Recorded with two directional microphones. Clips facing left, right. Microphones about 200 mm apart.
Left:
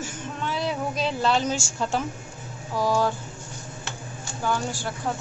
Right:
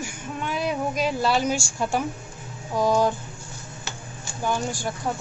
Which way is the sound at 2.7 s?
20° right (ahead or behind).